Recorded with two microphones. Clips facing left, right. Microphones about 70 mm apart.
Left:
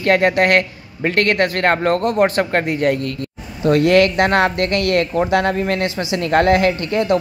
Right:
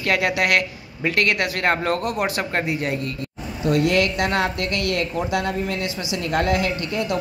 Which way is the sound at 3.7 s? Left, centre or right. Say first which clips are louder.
Left 6 dB; left.